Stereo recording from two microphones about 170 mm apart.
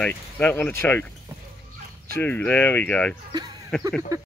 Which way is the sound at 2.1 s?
10° left (ahead or behind).